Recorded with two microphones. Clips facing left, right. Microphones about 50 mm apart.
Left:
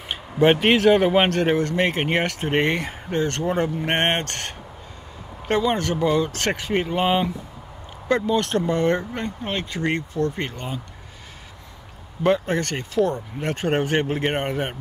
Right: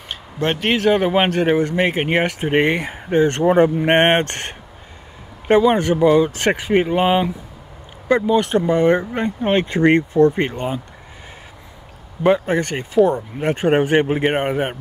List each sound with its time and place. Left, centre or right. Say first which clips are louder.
0.1 s a man's voice: left 4 dB; centre
12.2 s a man's voice: right 4 dB; centre